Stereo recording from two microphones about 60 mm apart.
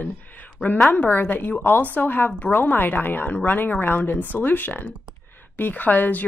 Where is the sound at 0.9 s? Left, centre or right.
Left.